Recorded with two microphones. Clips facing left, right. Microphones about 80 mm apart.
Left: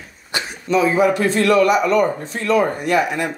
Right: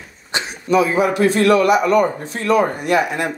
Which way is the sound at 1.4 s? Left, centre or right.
Centre.